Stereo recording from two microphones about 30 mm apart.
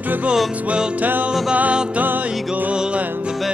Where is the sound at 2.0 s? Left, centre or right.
Right.